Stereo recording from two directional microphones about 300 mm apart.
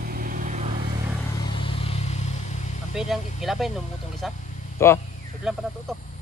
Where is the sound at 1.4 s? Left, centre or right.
Centre.